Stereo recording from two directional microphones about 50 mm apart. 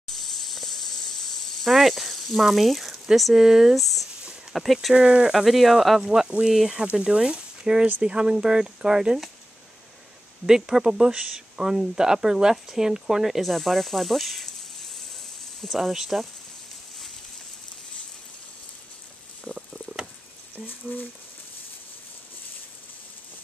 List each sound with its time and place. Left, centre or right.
0.1 s a sound: centre
1.6 s speech: centre
3.7 s speech: centre
4.9 s speech: centre
5.3 s speech: centre
10.4 s speech: centre
15.6 s speech: centre
19.4 s a sound: centre
20.9 s speech: left